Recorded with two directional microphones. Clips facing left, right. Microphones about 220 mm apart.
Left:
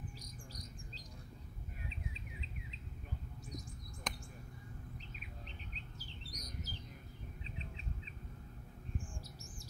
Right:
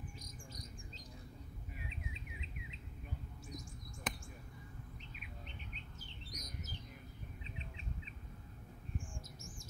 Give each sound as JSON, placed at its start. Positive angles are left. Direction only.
{"t": 0.2, "sound": "bird", "side_deg": 35}
{"t": 4.1, "sound": "basketball bounce", "side_deg": -5}
{"t": 5.9, "sound": "bird", "side_deg": 35}